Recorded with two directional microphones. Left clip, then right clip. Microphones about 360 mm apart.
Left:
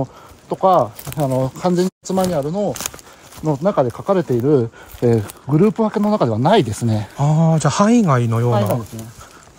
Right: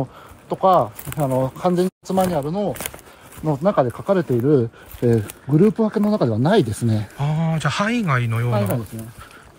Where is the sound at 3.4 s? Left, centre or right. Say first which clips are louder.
Left 1 dB; left; by 9.0 s centre.